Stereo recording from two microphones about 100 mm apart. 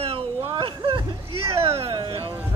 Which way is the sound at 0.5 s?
60° right (ahead or behind).